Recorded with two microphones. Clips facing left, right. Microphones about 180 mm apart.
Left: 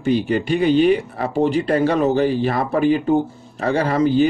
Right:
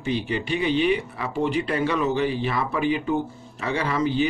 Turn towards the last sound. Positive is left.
turn(degrees=40)  # may be behind; listen again after turning